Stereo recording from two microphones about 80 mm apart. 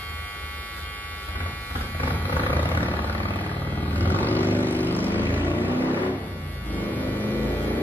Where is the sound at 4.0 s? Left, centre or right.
Left.